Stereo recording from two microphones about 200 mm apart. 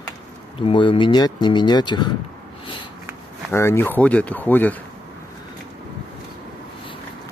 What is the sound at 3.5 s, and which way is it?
Speech, 10° left (ahead or behind).